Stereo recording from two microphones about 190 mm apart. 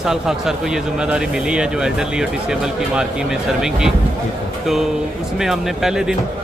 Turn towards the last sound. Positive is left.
turn(degrees=-5)  # may be behind; listen again after turning